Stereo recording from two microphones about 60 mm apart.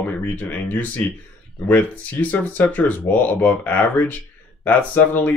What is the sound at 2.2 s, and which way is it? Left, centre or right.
Speech, left.